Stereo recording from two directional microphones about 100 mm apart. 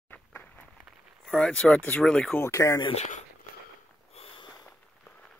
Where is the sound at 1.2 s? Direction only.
10° left (ahead or behind).